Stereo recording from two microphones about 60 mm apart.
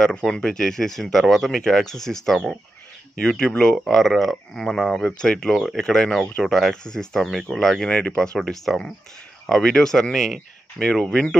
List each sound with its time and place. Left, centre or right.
0.0 s speech: centre
3.2 s speech: centre
7.9 s speech: left
8.5 s speech: centre